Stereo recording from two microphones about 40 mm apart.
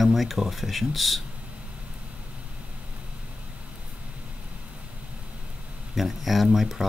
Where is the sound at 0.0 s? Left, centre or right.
Centre.